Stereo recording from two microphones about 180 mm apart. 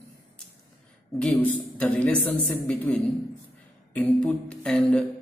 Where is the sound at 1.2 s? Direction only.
5° left (ahead or behind).